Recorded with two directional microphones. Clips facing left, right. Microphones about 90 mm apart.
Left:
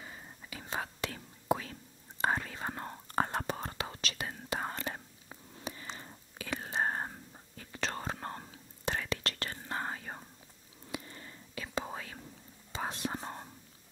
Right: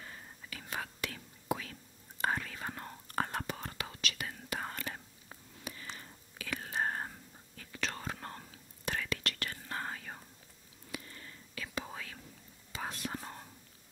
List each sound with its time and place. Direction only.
0.0 s whispering: 10° left (ahead or behind)
0.6 s whispering: 25° left (ahead or behind)